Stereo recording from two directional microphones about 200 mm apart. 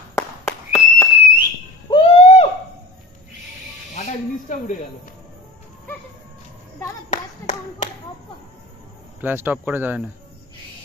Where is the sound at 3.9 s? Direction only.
40° left (ahead or behind).